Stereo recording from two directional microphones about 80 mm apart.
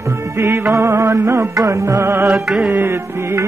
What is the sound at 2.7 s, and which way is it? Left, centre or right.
Music, right.